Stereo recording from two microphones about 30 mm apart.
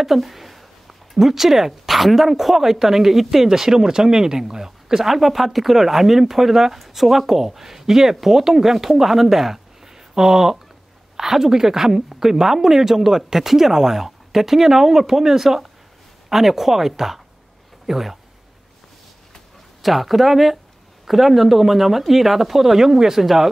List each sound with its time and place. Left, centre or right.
0.0 s speech: centre
5.0 s speech: centre
19.8 s speech: centre